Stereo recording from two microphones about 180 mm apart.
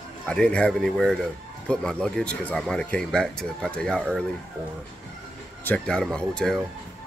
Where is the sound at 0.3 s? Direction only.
5° left (ahead or behind).